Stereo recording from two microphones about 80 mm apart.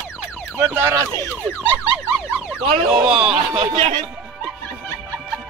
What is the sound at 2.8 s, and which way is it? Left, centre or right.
Speech, centre.